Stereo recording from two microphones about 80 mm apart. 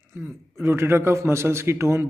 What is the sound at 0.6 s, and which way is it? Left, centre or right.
Speech, right.